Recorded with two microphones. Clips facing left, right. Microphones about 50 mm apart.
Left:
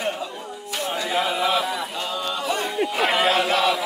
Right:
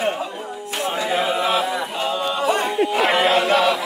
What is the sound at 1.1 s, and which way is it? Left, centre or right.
Chant, centre.